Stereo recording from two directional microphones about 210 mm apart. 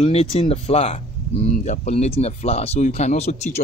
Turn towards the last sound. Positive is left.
turn(degrees=30)  # may be behind; listen again after turning